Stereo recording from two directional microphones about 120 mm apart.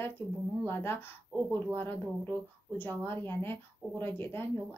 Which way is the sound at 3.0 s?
20° left (ahead or behind).